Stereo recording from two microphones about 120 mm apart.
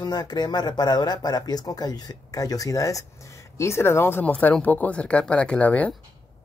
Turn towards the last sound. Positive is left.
turn(degrees=10)  # may be behind; listen again after turning